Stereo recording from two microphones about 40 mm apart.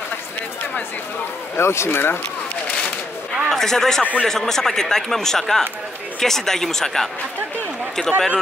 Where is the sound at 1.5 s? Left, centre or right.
Left.